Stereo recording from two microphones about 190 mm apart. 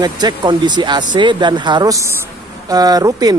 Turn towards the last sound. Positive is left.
turn(degrees=-20)  # may be behind; listen again after turning